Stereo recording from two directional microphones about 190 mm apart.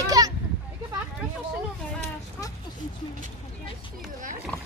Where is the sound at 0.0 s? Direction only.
20° right (ahead or behind).